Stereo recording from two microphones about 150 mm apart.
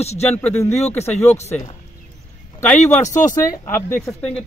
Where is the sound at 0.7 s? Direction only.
45° left (ahead or behind).